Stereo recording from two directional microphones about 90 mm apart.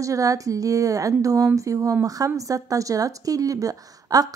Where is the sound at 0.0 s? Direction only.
40° right (ahead or behind).